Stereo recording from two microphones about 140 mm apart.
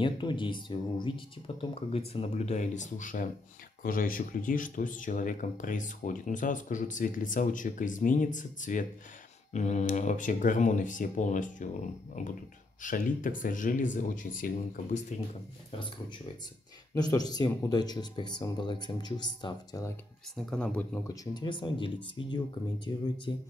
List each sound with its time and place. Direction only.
0.0 s speech: 35° left (ahead or behind); by 3.3 s 70° left (ahead or behind)
3.8 s speech: 85° left; by 8.8 s 65° left (ahead or behind)
9.5 s speech: 55° left (ahead or behind)
16.9 s speech: 25° left (ahead or behind)
20.3 s speech: 5° left (ahead or behind)
21.1 s speech: 25° left (ahead or behind)